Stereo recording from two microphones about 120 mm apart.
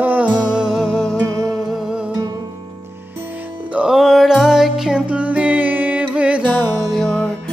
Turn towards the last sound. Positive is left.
turn(degrees=5)  # may be behind; listen again after turning